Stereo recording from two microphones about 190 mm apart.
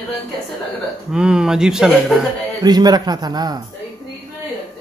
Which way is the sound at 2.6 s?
20° right (ahead or behind).